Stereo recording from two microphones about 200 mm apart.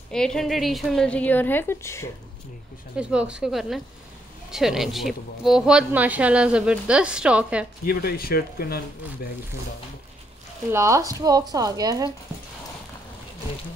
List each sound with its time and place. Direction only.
0.1 s speech: 5° left (ahead or behind)
3.0 s speech: 5° right (ahead or behind)
7.8 s speech: 50° left (ahead or behind)
10.7 s speech: 15° right (ahead or behind)